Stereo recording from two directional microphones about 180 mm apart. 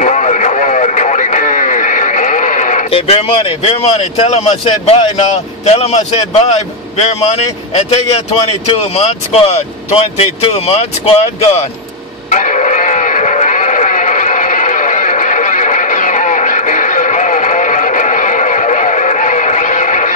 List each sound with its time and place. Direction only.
0.0 s radio: 40° left (ahead or behind)
2.9 s speech: 30° left (ahead or behind)
12.3 s sheep: 40° left (ahead or behind)